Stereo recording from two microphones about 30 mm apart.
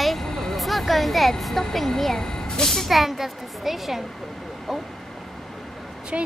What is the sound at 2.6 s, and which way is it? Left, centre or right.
Speech, centre.